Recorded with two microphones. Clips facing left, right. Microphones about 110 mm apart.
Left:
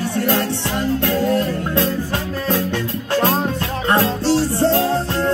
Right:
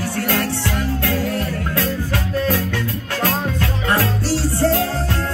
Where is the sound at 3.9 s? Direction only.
25° left (ahead or behind).